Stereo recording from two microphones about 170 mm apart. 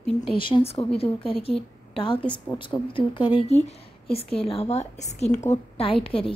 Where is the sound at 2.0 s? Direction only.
30° left (ahead or behind).